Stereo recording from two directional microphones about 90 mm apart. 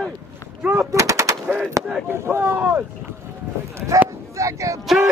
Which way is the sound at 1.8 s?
35° right (ahead or behind).